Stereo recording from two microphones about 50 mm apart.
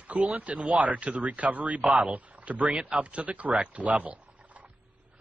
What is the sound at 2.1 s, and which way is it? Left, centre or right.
Speech, right.